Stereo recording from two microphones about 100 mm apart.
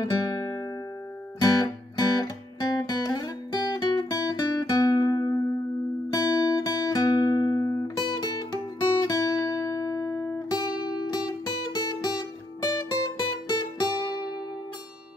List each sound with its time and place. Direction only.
0.0 s music: 35° left (ahead or behind)
6.1 s guitar: 45° left (ahead or behind)
9.0 s music: 40° left (ahead or behind)